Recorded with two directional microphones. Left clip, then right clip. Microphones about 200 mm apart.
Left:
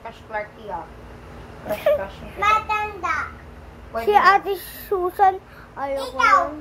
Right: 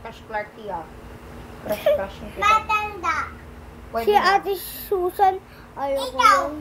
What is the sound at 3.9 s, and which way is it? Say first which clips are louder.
A child's voice: left 2 dB; 10° right (ahead or behind).